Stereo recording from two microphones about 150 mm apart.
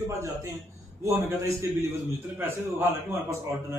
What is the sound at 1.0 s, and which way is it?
A man's voice, 20° right (ahead or behind).